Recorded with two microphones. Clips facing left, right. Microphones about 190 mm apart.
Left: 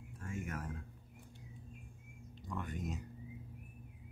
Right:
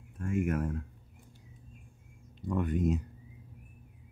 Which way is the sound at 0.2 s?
60° right (ahead or behind).